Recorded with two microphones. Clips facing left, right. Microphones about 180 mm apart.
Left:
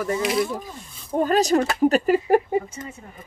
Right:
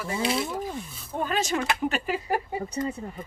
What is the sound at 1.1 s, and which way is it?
Speech, 40° left (ahead or behind).